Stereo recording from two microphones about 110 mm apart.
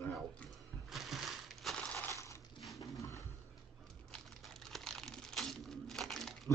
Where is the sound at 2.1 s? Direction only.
25° left (ahead or behind).